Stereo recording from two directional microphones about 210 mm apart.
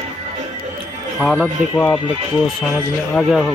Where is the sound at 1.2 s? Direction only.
5° left (ahead or behind).